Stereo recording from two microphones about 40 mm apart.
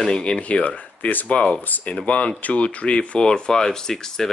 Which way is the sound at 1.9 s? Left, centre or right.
Left.